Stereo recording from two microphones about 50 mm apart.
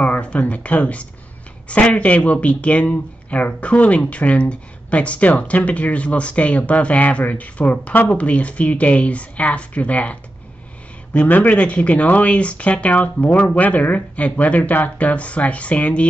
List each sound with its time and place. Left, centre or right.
0.0 s speech: left
11.2 s speech: left